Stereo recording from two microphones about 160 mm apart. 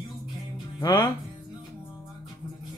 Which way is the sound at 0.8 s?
25° left (ahead or behind).